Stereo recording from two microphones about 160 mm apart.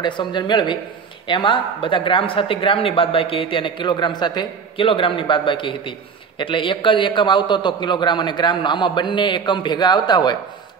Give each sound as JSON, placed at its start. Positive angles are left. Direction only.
{"t": 0.0, "sound": "speech", "side_deg": 30}